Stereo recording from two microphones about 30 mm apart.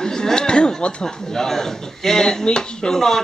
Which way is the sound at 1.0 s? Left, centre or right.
Left.